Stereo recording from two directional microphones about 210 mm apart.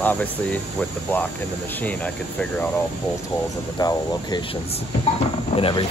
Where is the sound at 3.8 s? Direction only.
20° left (ahead or behind).